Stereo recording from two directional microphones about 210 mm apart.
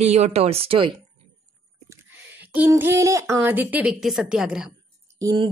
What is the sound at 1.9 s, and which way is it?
Speech, 10° right (ahead or behind).